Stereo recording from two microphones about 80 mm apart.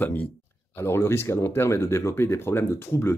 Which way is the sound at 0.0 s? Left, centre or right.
Left.